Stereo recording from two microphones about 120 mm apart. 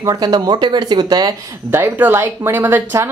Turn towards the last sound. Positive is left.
turn(degrees=-20)  # may be behind; listen again after turning